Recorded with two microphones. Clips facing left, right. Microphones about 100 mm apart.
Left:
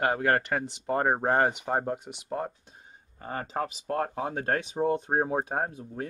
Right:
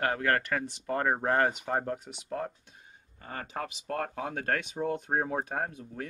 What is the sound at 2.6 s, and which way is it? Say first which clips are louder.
Speech: left 3 dB; 35° left (ahead or behind).